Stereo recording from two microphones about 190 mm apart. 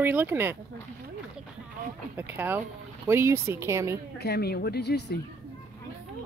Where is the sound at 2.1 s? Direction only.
10° right (ahead or behind).